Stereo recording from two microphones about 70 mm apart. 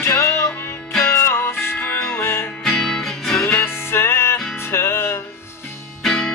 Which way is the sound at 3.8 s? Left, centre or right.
Left.